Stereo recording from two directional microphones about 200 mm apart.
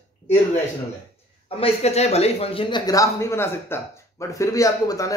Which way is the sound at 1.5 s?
30° left (ahead or behind).